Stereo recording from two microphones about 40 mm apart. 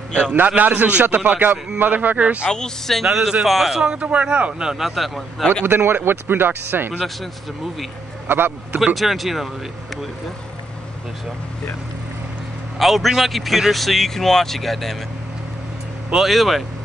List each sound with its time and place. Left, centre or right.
0.2 s a man's voice: right
2.5 s speech: centre
3.0 s a man's voice: centre
3.7 s speech: right
4.0 s a man's voice: right
4.6 s a man's voice: centre
5.7 s speech: right
8.3 s speech: right
8.9 s a man's voice: centre
12.7 s a man's voice: centre
16.3 s a man's voice: centre